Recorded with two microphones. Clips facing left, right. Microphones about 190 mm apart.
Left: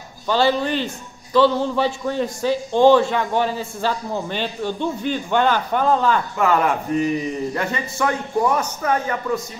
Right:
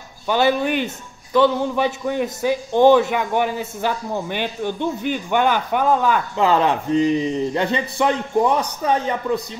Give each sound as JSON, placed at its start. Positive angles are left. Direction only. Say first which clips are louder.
{"t": 0.3, "sound": "a man's voice", "louder": "right 1 dB", "side_deg": -15}
{"t": 6.3, "sound": "a man's voice", "louder": "right 1 dB", "side_deg": -25}